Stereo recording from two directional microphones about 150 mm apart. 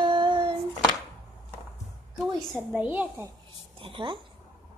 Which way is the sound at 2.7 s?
10° right (ahead or behind).